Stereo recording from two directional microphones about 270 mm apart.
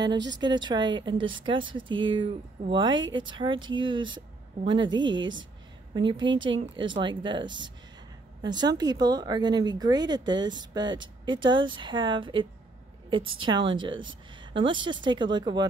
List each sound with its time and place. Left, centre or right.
0.4 s speech: centre
5.2 s speech: right
5.9 s speech: centre